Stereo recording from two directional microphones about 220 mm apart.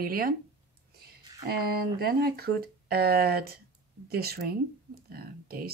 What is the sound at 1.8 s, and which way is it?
Speech, 45° right (ahead or behind).